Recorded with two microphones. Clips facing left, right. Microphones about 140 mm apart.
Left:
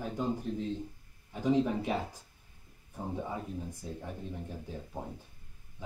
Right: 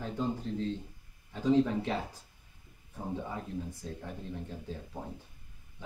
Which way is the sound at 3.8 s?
15° left (ahead or behind).